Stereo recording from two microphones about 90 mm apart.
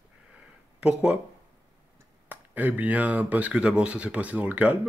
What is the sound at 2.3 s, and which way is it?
Speech, 20° right (ahead or behind).